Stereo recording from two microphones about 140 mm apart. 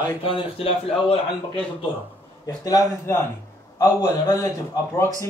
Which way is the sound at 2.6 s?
25° left (ahead or behind).